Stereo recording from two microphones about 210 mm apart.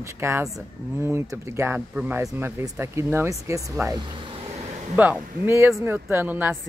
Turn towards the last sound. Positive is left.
turn(degrees=-10)  # may be behind; listen again after turning